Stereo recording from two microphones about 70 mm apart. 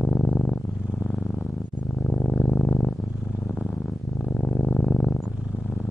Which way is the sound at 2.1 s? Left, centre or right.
Centre.